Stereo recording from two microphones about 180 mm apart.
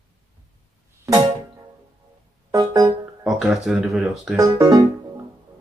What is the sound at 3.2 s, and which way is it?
Speech, 5° right (ahead or behind).